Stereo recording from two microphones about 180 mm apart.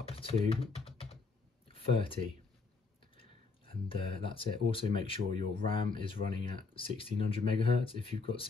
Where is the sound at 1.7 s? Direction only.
30° left (ahead or behind).